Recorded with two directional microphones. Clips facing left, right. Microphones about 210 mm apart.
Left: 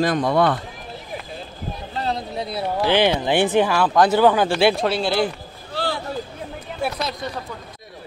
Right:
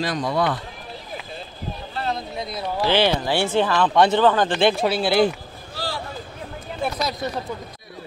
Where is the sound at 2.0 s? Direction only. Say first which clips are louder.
Left 2 dB; 35° left (ahead or behind).